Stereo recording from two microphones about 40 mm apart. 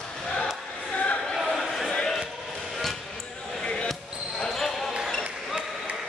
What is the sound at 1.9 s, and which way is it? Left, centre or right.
Basketball bounce, centre.